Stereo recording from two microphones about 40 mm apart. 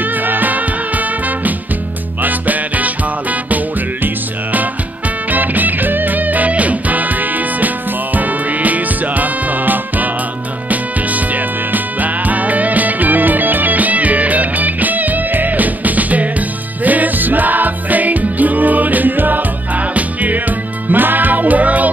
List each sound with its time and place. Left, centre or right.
0.0 s music: right